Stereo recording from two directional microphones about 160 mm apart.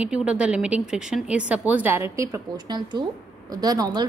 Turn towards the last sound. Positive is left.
turn(degrees=-25)  # may be behind; listen again after turning